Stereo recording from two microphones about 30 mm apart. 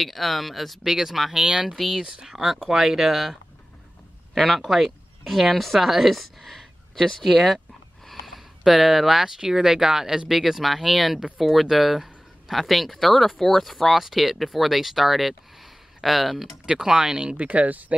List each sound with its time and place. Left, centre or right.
0.0 s speech: centre
0.8 s speech: centre
1.3 s speech: right
2.3 s speech: centre
4.4 s speech: centre
8.1 s a sound: centre
9.5 s speech: centre
13.9 s speech: centre
16.6 s speech: right
17.4 s speech: right